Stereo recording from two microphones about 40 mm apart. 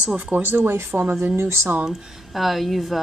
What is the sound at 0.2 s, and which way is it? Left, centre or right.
Speech, right.